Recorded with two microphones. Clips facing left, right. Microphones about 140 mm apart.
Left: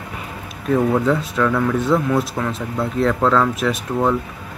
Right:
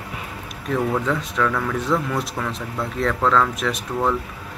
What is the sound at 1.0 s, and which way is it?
Speech, 5° left (ahead or behind).